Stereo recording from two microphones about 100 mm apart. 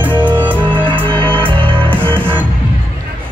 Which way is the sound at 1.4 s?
60° right (ahead or behind).